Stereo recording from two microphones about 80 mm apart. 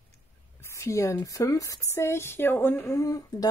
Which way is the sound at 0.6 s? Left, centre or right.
Left.